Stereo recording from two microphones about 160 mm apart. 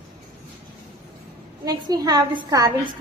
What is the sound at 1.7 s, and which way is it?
A woman's voice, 25° right (ahead or behind).